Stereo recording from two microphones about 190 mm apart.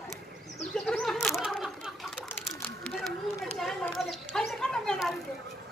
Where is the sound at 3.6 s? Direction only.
Centre (ahead or behind).